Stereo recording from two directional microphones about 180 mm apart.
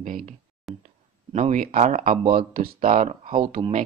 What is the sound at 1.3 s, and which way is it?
Speech, 45° right (ahead or behind).